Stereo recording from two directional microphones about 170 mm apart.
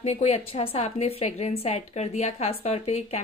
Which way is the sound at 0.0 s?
40° left (ahead or behind).